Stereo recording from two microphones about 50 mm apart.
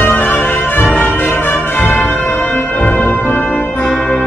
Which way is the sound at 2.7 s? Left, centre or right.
Left.